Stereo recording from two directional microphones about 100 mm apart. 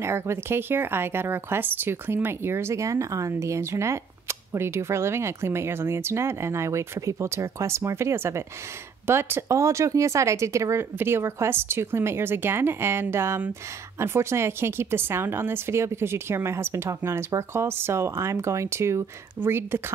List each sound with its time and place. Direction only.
0.0 s speech: 25° right (ahead or behind)